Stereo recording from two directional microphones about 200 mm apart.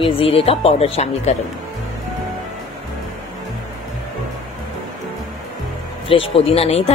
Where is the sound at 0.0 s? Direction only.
30° left (ahead or behind).